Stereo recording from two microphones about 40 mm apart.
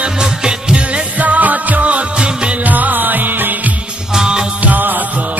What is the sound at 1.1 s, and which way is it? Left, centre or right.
Music, right.